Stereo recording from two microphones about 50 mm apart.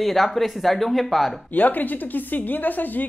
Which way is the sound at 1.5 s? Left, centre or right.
Left.